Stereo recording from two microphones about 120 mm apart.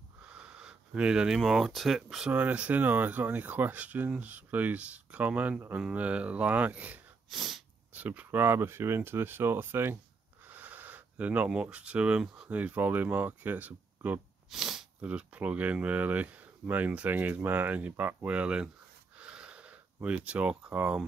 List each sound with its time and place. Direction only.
0.3 s speech: 10° right (ahead or behind)
7.2 s speech: centre (ahead or behind)
19.1 s a sound: 10° right (ahead or behind)